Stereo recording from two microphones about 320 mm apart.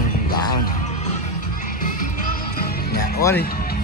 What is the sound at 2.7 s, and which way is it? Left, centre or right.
Music, left.